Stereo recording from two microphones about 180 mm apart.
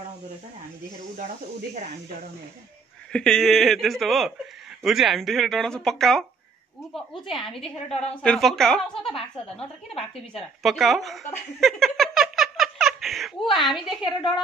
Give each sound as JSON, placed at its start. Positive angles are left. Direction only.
{"t": 3.1, "sound": "speech", "side_deg": 5}
{"t": 9.1, "sound": "a woman's voice", "side_deg": 30}
{"t": 10.6, "sound": "speech", "side_deg": 0}
{"t": 11.6, "sound": "giggle", "side_deg": 0}